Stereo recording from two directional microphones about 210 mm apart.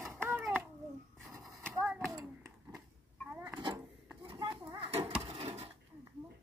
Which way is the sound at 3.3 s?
10° right (ahead or behind).